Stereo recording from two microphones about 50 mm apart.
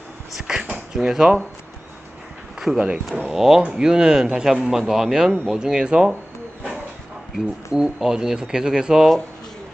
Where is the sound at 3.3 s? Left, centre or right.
Centre.